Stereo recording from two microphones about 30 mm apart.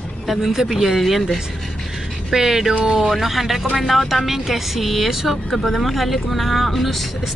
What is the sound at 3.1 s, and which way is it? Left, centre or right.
Speech, centre.